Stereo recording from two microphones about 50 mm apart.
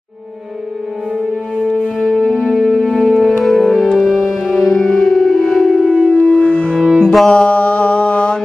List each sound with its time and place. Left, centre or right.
1.6 s music: centre
2.0 s music: centre
6.4 s cello: left
7.0 s music: centre
7.2 s mantra: centre